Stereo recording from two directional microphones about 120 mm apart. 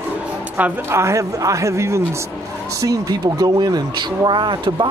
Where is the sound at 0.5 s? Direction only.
20° right (ahead or behind).